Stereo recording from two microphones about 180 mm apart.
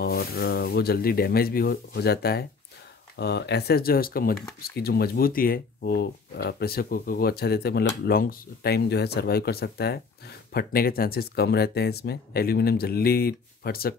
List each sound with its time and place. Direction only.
0.0 s speech: 60° left (ahead or behind)